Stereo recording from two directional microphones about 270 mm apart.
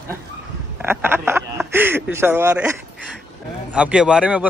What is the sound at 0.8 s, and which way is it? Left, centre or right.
Speech, centre.